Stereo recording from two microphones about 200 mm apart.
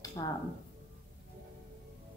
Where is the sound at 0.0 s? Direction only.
20° left (ahead or behind).